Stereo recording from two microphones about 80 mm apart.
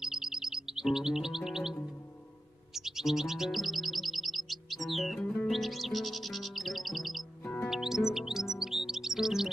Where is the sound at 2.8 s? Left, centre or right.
Centre.